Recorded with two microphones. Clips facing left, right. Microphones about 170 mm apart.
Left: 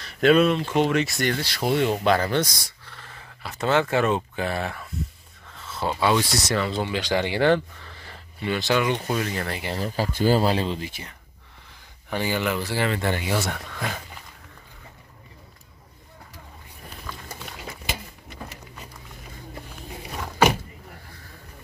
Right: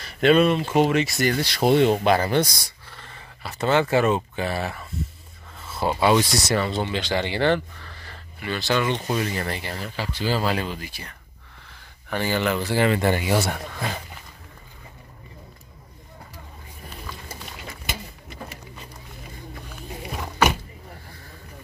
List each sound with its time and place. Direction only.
0.0 s speech: centre (ahead or behind)
1.4 s speech: 20° right (ahead or behind)
3.0 s speech: centre (ahead or behind)
6.8 s speech: 10° left (ahead or behind)
9.0 s speech: centre (ahead or behind)
9.8 s speech: 40° left (ahead or behind)
10.4 s speech: 30° left (ahead or behind); by 12.8 s centre (ahead or behind)
12.8 s speech: 15° right (ahead or behind)